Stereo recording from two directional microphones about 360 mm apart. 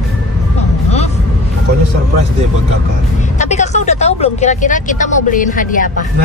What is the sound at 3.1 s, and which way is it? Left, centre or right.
Vehicle, centre.